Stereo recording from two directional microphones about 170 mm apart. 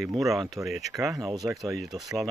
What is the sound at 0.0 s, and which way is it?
Speech, centre (ahead or behind).